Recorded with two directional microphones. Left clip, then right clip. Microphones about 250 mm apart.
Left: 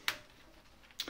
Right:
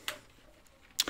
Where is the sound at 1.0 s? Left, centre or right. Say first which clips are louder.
Right 9 dB; right.